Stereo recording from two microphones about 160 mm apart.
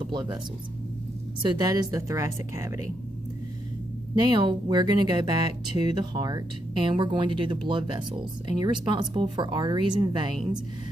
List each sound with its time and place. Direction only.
0.1 s speech: 25° right (ahead or behind)
1.4 s speech: 25° right (ahead or behind)
4.3 s speech: 30° right (ahead or behind)